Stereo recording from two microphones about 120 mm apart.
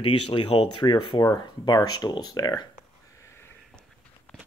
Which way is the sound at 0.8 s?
35° left (ahead or behind).